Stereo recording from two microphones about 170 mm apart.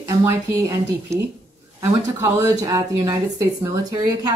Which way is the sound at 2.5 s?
20° right (ahead or behind).